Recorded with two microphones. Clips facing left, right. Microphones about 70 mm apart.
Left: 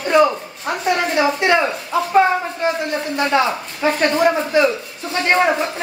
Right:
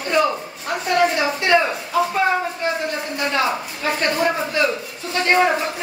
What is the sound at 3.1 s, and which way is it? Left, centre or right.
A man's voice, left.